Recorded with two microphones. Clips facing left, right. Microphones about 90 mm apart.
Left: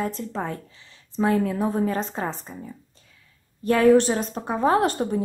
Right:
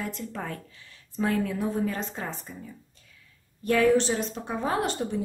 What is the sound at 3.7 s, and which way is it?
A woman's voice, 40° left (ahead or behind).